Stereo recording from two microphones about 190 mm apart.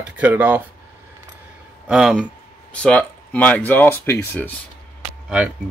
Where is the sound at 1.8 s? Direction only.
5° right (ahead or behind).